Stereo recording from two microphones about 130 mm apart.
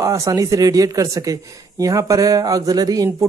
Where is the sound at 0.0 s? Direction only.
25° right (ahead or behind).